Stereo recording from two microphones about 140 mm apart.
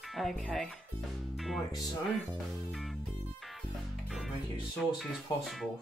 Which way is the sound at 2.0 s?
Centre (ahead or behind).